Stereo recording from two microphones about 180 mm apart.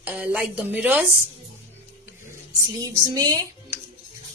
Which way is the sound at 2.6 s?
20° right (ahead or behind).